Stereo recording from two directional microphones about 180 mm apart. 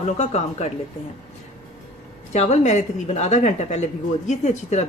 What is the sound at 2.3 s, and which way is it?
Speech, 40° left (ahead or behind).